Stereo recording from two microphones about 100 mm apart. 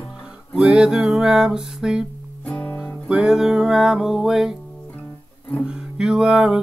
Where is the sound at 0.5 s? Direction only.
10° right (ahead or behind).